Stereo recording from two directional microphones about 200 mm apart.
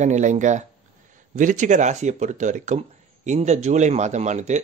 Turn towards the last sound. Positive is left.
turn(degrees=-35)  # may be behind; listen again after turning